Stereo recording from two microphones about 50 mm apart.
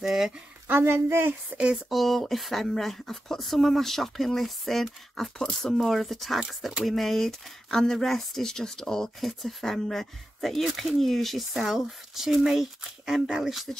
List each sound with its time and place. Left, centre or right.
0.0 s speech: centre
0.7 s speech: right
1.5 s speech: right
1.9 s speech: centre
9.2 s speech: centre